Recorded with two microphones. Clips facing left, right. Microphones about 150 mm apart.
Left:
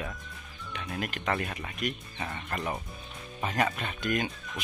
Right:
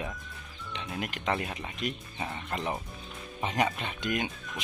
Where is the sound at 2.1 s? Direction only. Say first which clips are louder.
Even; 10° right (ahead or behind).